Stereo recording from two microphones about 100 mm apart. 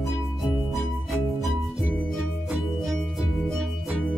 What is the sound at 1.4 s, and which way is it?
Music, centre (ahead or behind).